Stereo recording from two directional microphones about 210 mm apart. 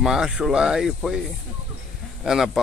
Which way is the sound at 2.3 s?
Centre (ahead or behind).